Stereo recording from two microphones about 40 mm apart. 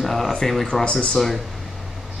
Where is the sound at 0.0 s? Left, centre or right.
Centre.